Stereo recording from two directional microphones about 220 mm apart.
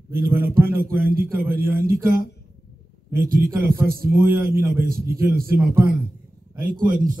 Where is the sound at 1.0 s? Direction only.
40° right (ahead or behind).